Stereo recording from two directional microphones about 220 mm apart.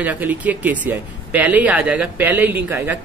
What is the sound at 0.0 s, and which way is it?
Speech, 5° right (ahead or behind).